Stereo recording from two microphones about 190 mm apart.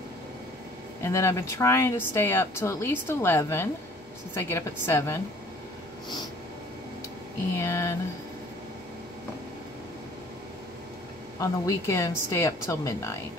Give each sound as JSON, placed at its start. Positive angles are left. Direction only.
{"t": 1.0, "sound": "speech", "side_deg": 15}
{"t": 7.5, "sound": "speech", "side_deg": 15}
{"t": 11.3, "sound": "speech", "side_deg": 15}